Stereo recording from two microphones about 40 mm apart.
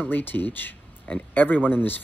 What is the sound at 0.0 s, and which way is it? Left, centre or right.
Speech, left.